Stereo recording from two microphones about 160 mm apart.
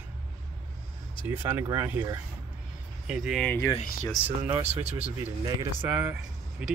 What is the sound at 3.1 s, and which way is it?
Speech, 5° right (ahead or behind).